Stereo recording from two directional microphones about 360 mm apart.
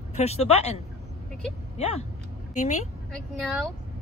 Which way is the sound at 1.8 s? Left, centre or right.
Centre.